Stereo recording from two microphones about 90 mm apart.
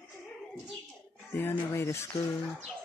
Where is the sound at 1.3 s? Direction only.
25° left (ahead or behind).